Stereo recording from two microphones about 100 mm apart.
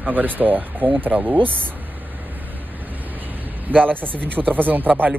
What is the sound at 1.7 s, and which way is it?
Vehicle, 20° right (ahead or behind).